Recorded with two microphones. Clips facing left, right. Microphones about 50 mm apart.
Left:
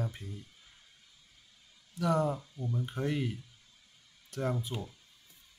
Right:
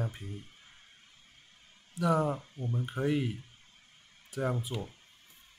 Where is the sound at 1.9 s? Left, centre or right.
Centre.